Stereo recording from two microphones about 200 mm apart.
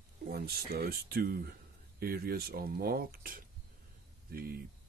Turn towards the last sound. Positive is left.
turn(degrees=-45)  # may be behind; listen again after turning